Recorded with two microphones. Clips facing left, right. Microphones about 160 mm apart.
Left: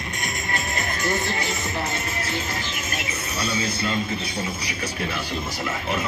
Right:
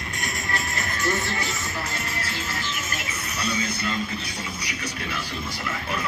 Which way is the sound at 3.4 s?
30° left (ahead or behind).